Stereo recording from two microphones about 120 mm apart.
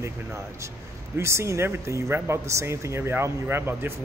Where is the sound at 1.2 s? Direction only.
20° right (ahead or behind).